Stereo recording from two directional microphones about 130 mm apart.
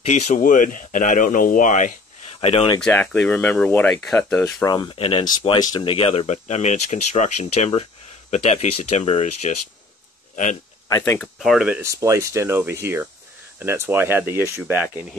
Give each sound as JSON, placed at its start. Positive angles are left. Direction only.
{"t": 0.0, "sound": "speech", "side_deg": 60}
{"t": 2.4, "sound": "speech", "side_deg": 50}
{"t": 2.8, "sound": "speech", "side_deg": 10}
{"t": 4.6, "sound": "speech", "side_deg": 35}
{"t": 5.6, "sound": "speech", "side_deg": 30}
{"t": 5.9, "sound": "speech", "side_deg": 45}
{"t": 10.3, "sound": "speech", "side_deg": 75}
{"t": 10.9, "sound": "speech", "side_deg": 20}
{"t": 11.1, "sound": "speech", "side_deg": 0}
{"t": 11.6, "sound": "speech", "side_deg": -10}
{"t": 11.9, "sound": "speech", "side_deg": -25}